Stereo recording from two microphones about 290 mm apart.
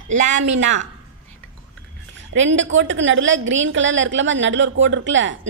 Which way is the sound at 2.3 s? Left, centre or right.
Right.